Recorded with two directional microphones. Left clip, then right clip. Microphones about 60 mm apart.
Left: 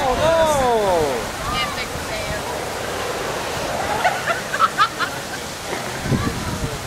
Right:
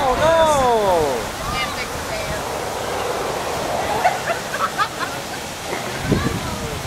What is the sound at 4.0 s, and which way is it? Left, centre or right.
Dog, centre.